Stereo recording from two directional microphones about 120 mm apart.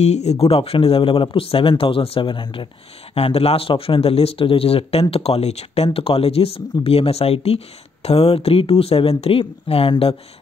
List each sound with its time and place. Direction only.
0.0 s speech: 65° left (ahead or behind); by 2.7 s 40° left (ahead or behind)
3.2 s speech: 55° left (ahead or behind)